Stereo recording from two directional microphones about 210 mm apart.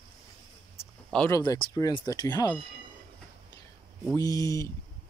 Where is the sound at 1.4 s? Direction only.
20° left (ahead or behind).